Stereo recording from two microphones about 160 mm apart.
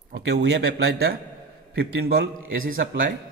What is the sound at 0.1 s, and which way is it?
A man's voice, 90° right.